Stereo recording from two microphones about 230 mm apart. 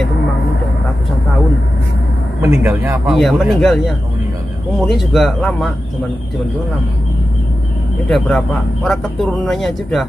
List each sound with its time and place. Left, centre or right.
2.4 s a man's voice: centre
3.2 s speech: centre
8.1 s speech: centre